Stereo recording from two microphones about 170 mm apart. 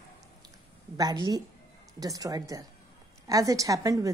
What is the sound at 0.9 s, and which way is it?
A woman's voice, 25° right (ahead or behind).